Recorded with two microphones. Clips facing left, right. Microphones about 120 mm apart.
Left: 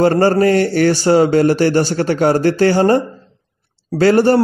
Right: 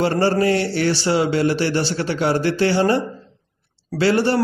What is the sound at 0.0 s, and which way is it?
A man's voice, 50° left (ahead or behind).